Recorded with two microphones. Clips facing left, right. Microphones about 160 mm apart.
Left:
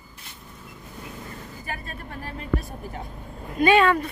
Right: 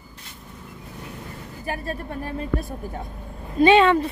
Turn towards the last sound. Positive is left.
turn(degrees=-25)  # may be behind; listen again after turning